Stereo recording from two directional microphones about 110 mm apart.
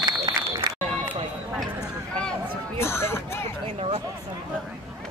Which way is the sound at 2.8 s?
25° left (ahead or behind).